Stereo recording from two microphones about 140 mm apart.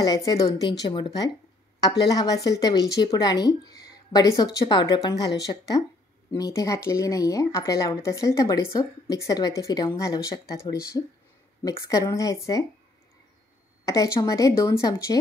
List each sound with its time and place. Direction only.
0.0 s speech: 25° left (ahead or behind)
13.8 s speech: 20° left (ahead or behind)